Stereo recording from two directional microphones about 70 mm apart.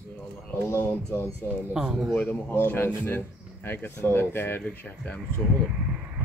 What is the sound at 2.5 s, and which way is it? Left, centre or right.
Speech, left.